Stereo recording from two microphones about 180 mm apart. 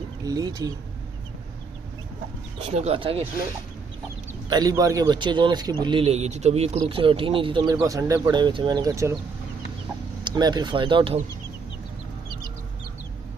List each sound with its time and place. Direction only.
0.2 s speech: 20° right (ahead or behind)
2.6 s speech: 35° right (ahead or behind)
4.5 s speech: 20° right (ahead or behind)
10.2 s speech: 25° right (ahead or behind)